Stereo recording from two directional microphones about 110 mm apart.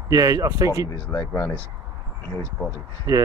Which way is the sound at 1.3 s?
20° left (ahead or behind).